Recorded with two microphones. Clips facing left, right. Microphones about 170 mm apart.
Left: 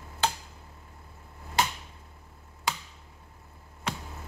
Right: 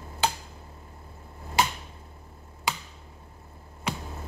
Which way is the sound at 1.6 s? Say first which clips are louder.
Right 2 dB; 10° right (ahead or behind).